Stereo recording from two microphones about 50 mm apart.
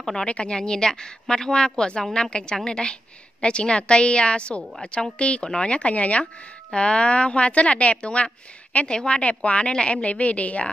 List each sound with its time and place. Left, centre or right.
0.3 s a woman's voice: centre